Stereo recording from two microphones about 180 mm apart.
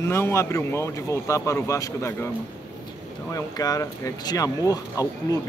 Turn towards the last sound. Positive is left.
turn(degrees=20)  # may be behind; listen again after turning